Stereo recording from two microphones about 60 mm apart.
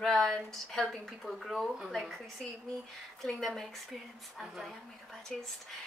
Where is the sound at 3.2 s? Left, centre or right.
Centre.